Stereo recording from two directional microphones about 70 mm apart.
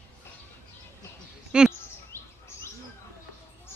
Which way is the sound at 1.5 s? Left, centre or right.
Centre.